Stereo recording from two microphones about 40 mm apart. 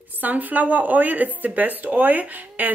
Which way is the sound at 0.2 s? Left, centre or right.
Right.